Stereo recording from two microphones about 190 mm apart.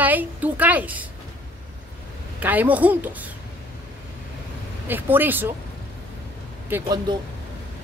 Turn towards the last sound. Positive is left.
turn(degrees=-20)  # may be behind; listen again after turning